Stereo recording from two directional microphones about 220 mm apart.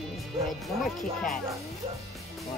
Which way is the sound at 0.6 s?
Centre (ahead or behind).